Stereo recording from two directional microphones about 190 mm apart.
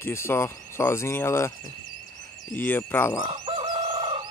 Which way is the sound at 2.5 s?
10° left (ahead or behind).